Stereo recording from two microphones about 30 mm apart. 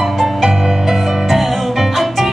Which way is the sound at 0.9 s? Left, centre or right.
Centre.